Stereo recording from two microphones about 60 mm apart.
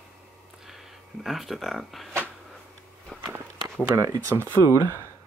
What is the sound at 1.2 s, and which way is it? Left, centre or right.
Speech, centre.